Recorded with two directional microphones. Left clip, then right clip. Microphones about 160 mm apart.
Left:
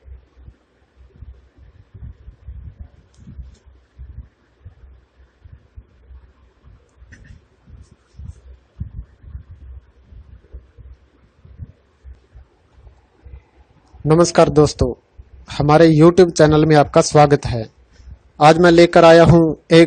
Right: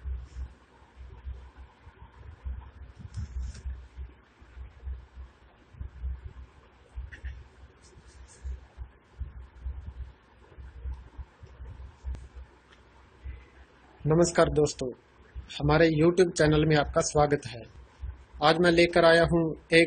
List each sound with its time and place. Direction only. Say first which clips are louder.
14.3 s a man's voice: left 11 dB; 65° left (ahead or behind)